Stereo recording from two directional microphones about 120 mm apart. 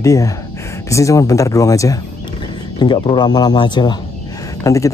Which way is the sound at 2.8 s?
40° left (ahead or behind).